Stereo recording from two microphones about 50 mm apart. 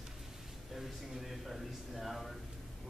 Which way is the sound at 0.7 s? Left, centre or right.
Centre.